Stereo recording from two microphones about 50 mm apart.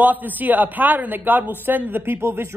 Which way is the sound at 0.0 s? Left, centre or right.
Right.